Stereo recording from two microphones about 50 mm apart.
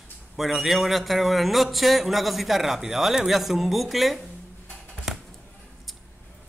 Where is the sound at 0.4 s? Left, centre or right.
Centre.